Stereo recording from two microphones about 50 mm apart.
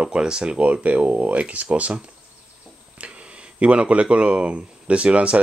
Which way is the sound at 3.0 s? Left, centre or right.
Right.